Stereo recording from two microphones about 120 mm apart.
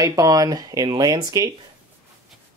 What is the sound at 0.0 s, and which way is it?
Speech, 30° right (ahead or behind).